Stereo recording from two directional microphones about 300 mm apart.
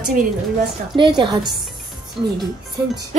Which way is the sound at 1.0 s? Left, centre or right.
Centre.